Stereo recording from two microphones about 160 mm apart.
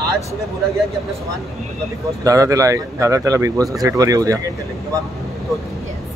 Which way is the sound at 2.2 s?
20° right (ahead or behind).